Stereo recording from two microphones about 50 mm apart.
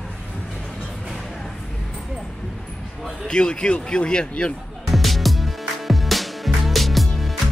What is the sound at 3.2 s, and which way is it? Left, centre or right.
A man's voice, centre.